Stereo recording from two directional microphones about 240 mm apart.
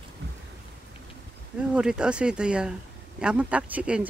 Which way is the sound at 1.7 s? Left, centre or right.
Centre.